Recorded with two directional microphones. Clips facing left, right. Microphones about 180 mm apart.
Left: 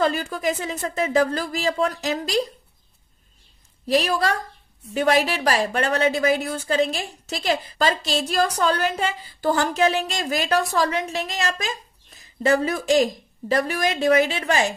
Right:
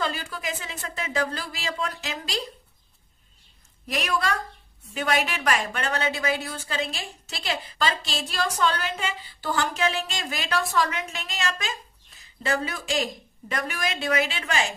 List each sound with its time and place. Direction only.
0.0 s a woman's voice: 45° left (ahead or behind)
3.8 s a woman's voice: 30° left (ahead or behind)